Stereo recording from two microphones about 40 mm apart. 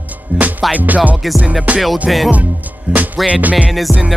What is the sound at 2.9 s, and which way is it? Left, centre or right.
Music, right.